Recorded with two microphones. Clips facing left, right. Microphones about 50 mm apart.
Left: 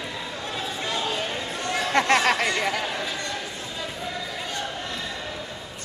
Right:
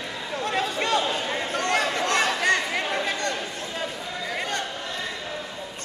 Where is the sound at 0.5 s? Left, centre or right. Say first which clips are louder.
Right 6 dB; right.